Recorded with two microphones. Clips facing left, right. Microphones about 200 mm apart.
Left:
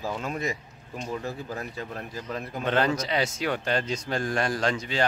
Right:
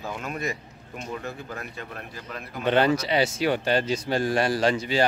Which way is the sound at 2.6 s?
5° right (ahead or behind).